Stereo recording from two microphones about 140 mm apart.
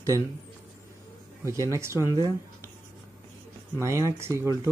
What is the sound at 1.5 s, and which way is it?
Speech, 20° right (ahead or behind).